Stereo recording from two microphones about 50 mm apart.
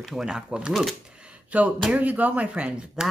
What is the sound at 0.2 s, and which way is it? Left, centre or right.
Speech, centre.